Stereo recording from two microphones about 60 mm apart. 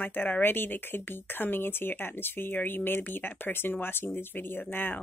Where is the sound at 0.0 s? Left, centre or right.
Left.